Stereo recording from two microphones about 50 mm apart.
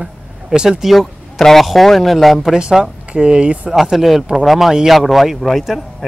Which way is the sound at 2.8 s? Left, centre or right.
Centre.